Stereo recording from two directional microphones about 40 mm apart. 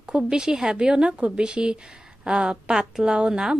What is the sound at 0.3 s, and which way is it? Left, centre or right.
A woman's voice, centre.